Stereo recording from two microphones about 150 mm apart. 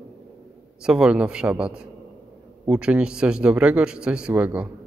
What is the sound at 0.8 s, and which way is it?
A man's voice, 5° right (ahead or behind).